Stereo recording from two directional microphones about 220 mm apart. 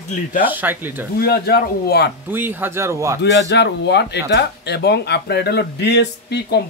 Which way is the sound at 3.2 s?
50° left (ahead or behind).